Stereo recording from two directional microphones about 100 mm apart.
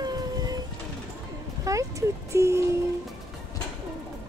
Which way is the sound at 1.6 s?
35° right (ahead or behind).